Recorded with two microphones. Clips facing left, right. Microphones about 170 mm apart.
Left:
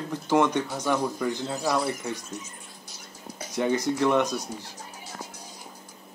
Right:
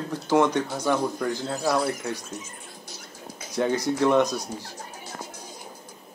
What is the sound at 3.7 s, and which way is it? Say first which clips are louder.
Speech: right 2 dB; 15° right (ahead or behind).